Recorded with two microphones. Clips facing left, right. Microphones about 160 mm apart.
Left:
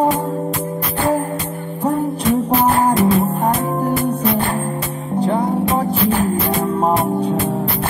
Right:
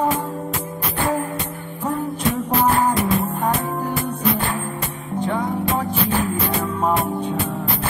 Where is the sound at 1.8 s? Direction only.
35° left (ahead or behind).